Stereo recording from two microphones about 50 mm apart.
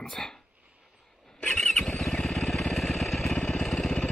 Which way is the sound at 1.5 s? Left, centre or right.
Centre.